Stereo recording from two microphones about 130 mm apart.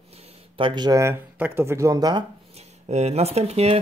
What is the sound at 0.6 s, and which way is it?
Speech, 35° right (ahead or behind).